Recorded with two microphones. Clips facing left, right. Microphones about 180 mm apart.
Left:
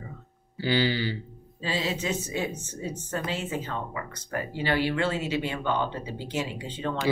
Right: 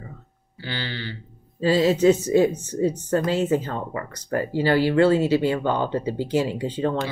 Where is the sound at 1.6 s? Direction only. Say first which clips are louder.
Right 12 dB; 40° right (ahead or behind).